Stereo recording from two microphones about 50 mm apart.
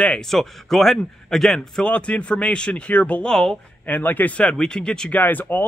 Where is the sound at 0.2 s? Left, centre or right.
Centre.